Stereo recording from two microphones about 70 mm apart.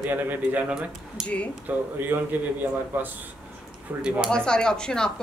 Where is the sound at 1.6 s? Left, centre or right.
Right.